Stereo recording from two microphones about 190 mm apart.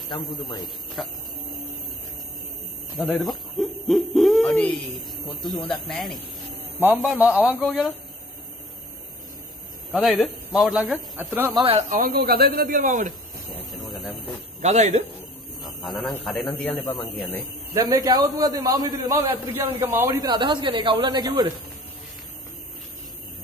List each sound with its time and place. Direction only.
1.0 s speech: centre (ahead or behind)
3.0 s a man's voice: centre (ahead or behind)
9.9 s a man's voice: centre (ahead or behind)
11.9 s speech: 50° right (ahead or behind)
14.6 s a man's voice: 35° right (ahead or behind)
15.6 s a man's voice: centre (ahead or behind)
17.7 s a man's voice: 20° right (ahead or behind)